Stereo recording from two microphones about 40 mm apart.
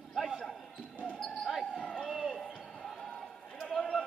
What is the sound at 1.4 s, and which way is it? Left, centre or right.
Basketball bounce, centre.